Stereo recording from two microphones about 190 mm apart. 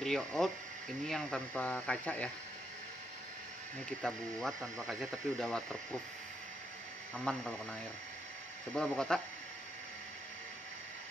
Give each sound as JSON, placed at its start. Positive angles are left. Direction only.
{"t": 0.0, "sound": "speech", "side_deg": 0}
{"t": 4.0, "sound": "speech", "side_deg": 0}
{"t": 7.2, "sound": "speech", "side_deg": 5}
{"t": 8.7, "sound": "speech", "side_deg": 5}